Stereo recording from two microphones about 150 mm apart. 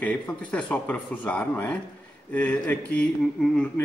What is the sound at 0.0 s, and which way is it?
A man's voice, 10° left (ahead or behind).